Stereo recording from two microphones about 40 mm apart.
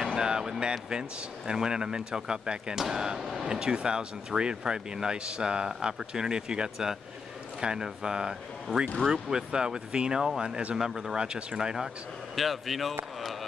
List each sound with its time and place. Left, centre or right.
0.1 s speech: centre
12.4 s speech: centre
13.2 s a sound: centre